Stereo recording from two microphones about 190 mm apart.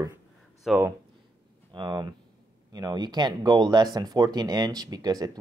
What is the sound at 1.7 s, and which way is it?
Speech, 20° right (ahead or behind).